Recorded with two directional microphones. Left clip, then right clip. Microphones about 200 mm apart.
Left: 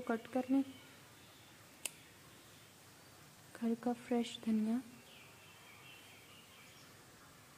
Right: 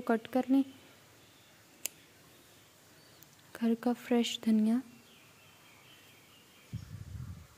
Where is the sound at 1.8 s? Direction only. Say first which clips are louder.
Right 3 dB; 15° right (ahead or behind).